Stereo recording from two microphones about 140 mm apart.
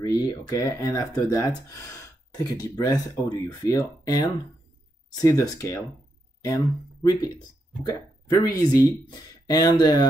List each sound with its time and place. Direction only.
0.0 s speech: 25° left (ahead or behind)